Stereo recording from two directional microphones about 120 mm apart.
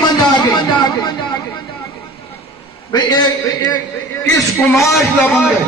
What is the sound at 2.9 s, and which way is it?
Speech, 35° left (ahead or behind).